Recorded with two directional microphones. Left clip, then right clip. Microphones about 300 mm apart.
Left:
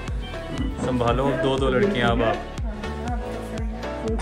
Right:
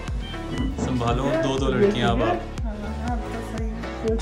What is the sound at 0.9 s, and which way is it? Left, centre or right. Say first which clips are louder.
Speech: left 1 dB; centre.